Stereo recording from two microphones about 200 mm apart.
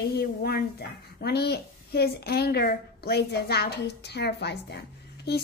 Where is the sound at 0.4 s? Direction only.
50° left (ahead or behind).